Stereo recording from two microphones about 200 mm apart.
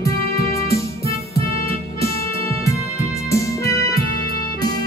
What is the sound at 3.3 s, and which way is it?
Music, 15° left (ahead or behind).